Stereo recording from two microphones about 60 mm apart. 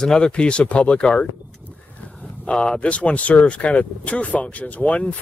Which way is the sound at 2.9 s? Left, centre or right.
Left.